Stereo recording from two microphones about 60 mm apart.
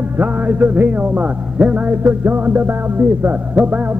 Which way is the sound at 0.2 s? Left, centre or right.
Right.